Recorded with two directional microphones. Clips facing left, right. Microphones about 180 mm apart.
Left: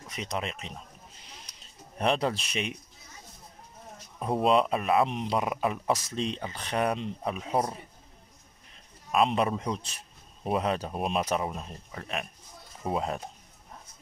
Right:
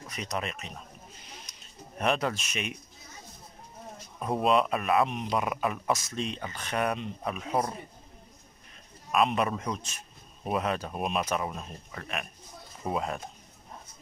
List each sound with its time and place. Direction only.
0.1 s speech: 25° left (ahead or behind)
1.5 s a sound: 30° left (ahead or behind)
4.2 s speech: 25° left (ahead or behind)
9.1 s speech: 30° left (ahead or behind)